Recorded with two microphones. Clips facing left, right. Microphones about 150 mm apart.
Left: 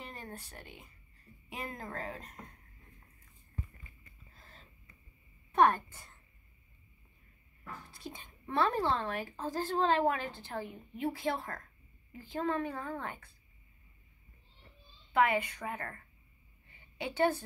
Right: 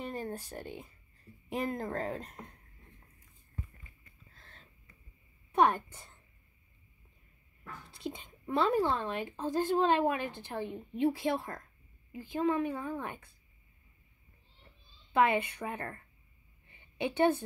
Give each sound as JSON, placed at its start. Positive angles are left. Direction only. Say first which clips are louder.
{"t": 0.1, "sound": "speech", "louder": "right 8 dB", "side_deg": -30}
{"t": 4.3, "sound": "a sound", "louder": "left 1 dB", "side_deg": 5}
{"t": 5.5, "sound": "a woman's voice", "louder": "even", "side_deg": -15}
{"t": 7.9, "sound": "a woman's voice", "louder": "right 6 dB", "side_deg": -20}
{"t": 15.1, "sound": "speech", "louder": "right 1 dB", "side_deg": -20}
{"t": 17.0, "sound": "speech", "louder": "right 3 dB", "side_deg": -20}